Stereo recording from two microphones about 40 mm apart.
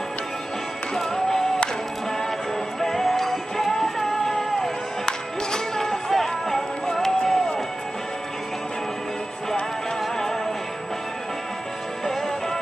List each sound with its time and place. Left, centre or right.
0.9 s music: centre
2.8 s music: centre